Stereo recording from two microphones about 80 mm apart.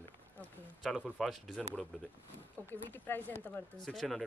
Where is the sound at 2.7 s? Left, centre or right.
Left.